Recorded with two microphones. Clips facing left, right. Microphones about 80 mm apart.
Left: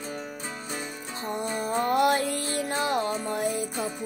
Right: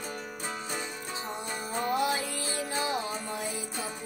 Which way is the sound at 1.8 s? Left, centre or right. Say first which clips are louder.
Left 6 dB; left.